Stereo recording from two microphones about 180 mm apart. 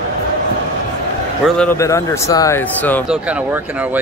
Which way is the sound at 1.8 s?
15° left (ahead or behind).